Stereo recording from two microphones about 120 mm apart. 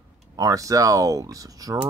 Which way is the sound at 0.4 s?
30° right (ahead or behind).